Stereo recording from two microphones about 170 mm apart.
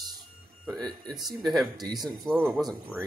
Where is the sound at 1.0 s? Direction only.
Centre (ahead or behind).